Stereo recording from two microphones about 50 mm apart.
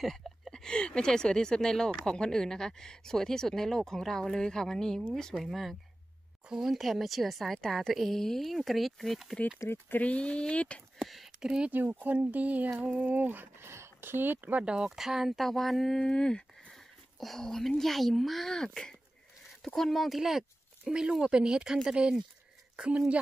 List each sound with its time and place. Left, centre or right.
0.0 s a woman's voice: centre
7.9 s a woman's voice: centre
9.8 s speech: left
11.0 s a sound: centre
11.4 s speech: centre
11.7 s speech: right
13.6 s speech: right
14.6 s speech: centre
14.9 s a woman's voice: centre
16.1 s speech: centre
16.7 s speech: centre; by 23.2 s right